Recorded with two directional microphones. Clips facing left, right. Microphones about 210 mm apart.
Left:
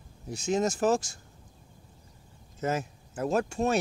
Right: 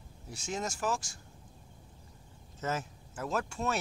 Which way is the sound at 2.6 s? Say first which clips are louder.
Left 5 dB; 15° left (ahead or behind).